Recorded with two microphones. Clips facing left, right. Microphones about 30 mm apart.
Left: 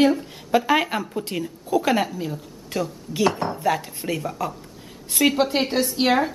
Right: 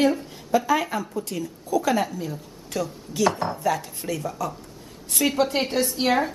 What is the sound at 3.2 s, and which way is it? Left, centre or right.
Speech, centre.